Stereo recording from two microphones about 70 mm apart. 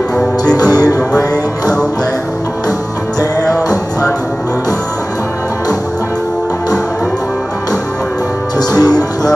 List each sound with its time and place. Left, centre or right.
0.7 s music: left
3.4 s music: left
8.5 s music: left